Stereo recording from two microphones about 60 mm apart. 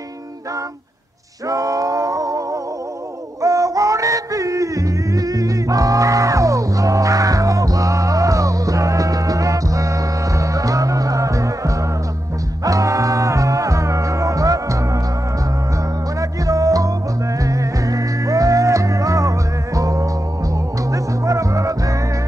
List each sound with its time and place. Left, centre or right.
1.5 s a sound: right
3.3 s music: right
16.2 s music: right